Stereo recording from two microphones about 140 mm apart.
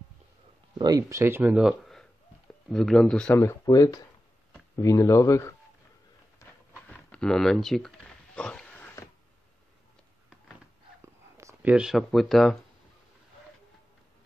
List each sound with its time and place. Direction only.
0.7 s speech: 30° right (ahead or behind); by 3.3 s 5° left (ahead or behind)
3.3 s speech: 25° left (ahead or behind)
6.9 s speech: 5° left (ahead or behind)
8.4 s a sound: 10° left (ahead or behind)
11.0 s a sound: 20° right (ahead or behind)
11.7 s speech: 5° right (ahead or behind)